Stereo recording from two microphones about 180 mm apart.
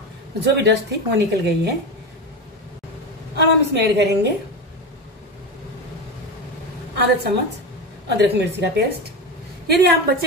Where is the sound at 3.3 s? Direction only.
70° right (ahead or behind).